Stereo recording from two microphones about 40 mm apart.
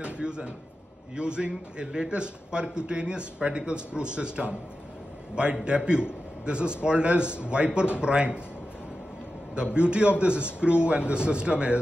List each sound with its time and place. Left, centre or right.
0.0 s a man's voice: right
9.6 s a man's voice: right